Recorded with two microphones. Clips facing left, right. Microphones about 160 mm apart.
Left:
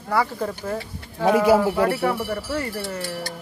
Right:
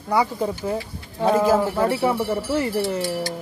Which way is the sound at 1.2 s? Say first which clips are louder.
Left 1 dB; 10° left (ahead or behind).